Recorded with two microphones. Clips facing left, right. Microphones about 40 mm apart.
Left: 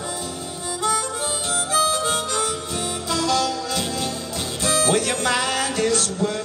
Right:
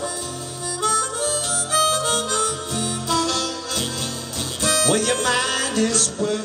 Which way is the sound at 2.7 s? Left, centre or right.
Left.